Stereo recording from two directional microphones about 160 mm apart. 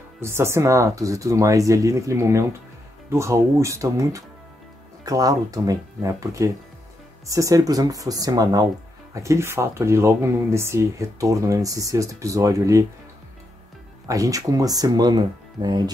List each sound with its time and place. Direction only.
0.2 s speech: 15° right (ahead or behind)
14.0 s speech: 20° right (ahead or behind)